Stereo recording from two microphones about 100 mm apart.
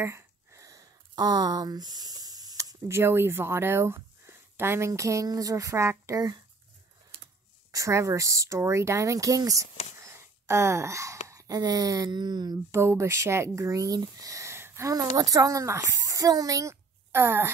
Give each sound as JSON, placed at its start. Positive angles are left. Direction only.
{"t": 0.0, "sound": "a sound", "side_deg": -30}
{"t": 2.9, "sound": "speech", "side_deg": -25}
{"t": 7.7, "sound": "speech", "side_deg": -30}
{"t": 9.9, "sound": "a sound", "side_deg": -30}
{"t": 12.7, "sound": "speech", "side_deg": -25}
{"t": 17.1, "sound": "speech", "side_deg": -20}